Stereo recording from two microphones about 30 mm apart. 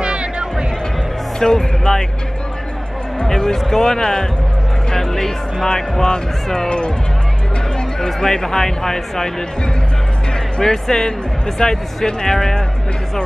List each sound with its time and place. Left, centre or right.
0.0 s music: right
1.4 s speech: left
3.3 s speech: centre
10.6 s speech: centre